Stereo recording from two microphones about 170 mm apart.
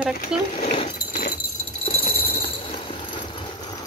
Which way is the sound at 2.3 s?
30° left (ahead or behind).